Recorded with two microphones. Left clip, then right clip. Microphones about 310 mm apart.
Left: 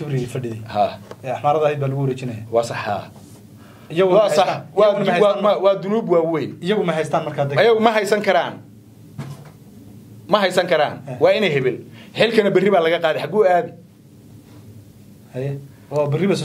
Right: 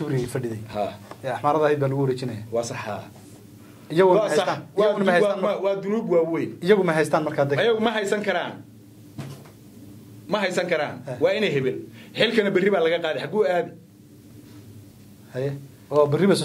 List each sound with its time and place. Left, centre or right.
0.0 s speech: centre
0.7 s a man's voice: left
1.2 s speech: right
2.5 s a man's voice: left
4.1 s a man's voice: left
4.9 s speech: right
5.2 s a man's voice: left
6.8 s speech: right
7.5 s a man's voice: left
10.2 s a man's voice: left
15.3 s a man's voice: centre